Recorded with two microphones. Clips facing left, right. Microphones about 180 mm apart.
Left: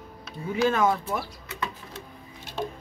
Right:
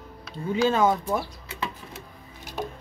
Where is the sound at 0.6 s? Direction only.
25° right (ahead or behind).